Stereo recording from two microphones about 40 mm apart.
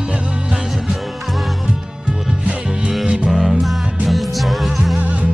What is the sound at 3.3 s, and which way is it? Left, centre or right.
Music, centre.